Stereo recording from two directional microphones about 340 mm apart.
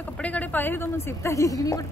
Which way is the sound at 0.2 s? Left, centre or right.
Centre.